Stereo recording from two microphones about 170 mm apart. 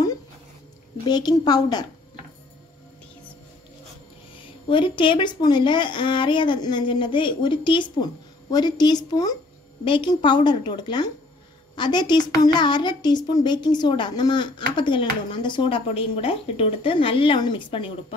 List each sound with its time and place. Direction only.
1.0 s a woman's voice: 25° left (ahead or behind)
4.4 s a woman's voice: 30° left (ahead or behind)